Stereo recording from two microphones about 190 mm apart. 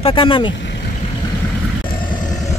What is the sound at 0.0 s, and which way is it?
Speech, 25° left (ahead or behind).